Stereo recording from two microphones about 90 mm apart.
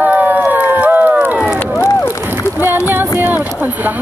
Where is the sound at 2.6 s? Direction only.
25° right (ahead or behind).